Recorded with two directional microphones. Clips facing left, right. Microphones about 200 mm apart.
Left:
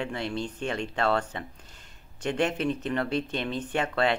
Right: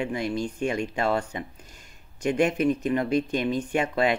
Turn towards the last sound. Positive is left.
turn(degrees=-10)  # may be behind; listen again after turning